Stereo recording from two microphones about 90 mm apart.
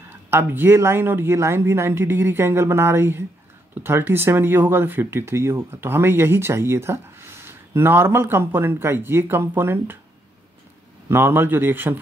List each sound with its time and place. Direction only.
0.3 s speech: 25° right (ahead or behind)
11.1 s speech: 25° right (ahead or behind)